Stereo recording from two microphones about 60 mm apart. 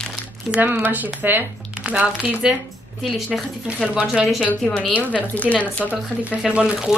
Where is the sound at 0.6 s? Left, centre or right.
Right.